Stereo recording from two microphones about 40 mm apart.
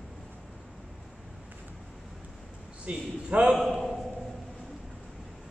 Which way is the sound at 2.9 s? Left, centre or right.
Right.